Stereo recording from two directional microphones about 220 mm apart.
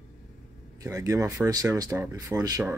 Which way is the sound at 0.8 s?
15° right (ahead or behind).